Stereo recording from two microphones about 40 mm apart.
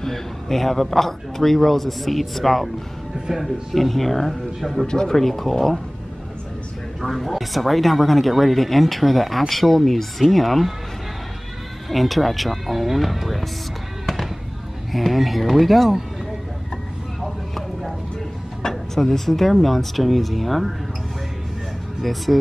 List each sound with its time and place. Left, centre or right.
0.0 s a man's voice: centre
4.8 s speech: centre
5.1 s a man's voice: centre
7.0 s a man's voice: centre
11.9 s a man's voice: centre
14.0 s fireworks: centre
14.9 s a man's voice: centre
17.2 s vehicle: centre
18.7 s a man's voice: centre
22.0 s a man's voice: centre